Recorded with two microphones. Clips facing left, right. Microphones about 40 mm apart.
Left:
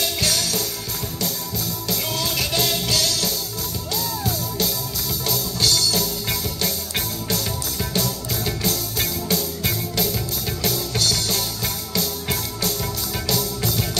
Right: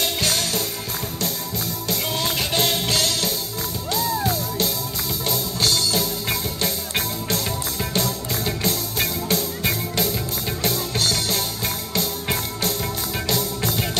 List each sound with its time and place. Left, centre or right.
0.0 s music: right
1.9 s music: right
8.5 s music: centre